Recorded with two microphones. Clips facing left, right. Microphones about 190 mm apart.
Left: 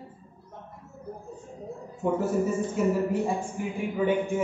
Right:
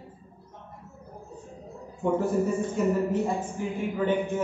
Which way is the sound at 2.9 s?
10° left (ahead or behind).